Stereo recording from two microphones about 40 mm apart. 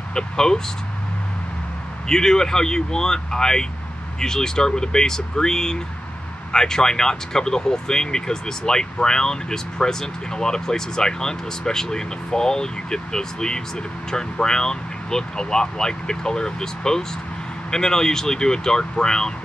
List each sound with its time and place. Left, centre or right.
0.1 s speech: centre
2.0 s speech: centre